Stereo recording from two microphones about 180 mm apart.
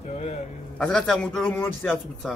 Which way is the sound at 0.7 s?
5° left (ahead or behind).